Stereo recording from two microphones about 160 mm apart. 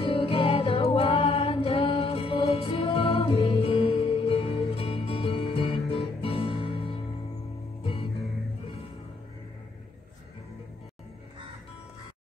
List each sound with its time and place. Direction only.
0.0 s music: 35° left (ahead or behind)